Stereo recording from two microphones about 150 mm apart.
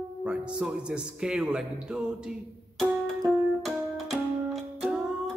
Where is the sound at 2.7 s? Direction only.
Centre (ahead or behind).